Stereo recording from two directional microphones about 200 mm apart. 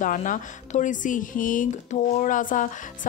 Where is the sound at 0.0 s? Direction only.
40° left (ahead or behind).